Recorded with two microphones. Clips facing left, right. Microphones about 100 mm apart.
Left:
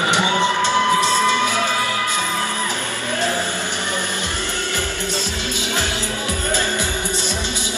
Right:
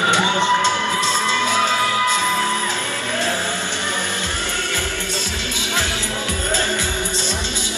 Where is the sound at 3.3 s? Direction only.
15° left (ahead or behind).